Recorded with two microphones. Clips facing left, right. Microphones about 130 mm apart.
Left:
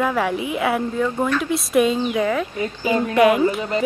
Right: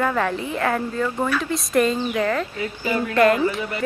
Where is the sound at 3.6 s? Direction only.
25° left (ahead or behind).